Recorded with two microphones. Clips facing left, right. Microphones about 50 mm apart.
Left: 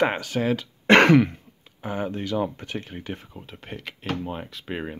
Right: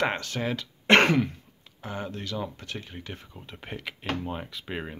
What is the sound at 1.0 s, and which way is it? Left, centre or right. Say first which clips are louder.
Speech: left 6 dB; left.